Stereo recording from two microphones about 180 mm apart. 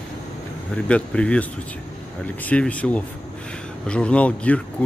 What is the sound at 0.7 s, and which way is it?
A man's voice, 5° left (ahead or behind).